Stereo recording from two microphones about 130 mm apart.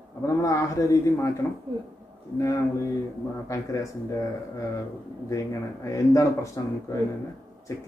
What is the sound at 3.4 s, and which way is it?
Speech, 25° left (ahead or behind).